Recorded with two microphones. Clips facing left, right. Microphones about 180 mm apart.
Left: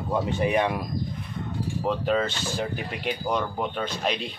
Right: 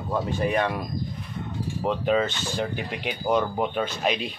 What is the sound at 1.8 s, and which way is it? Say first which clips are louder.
Speech: right 2 dB; centre (ahead or behind).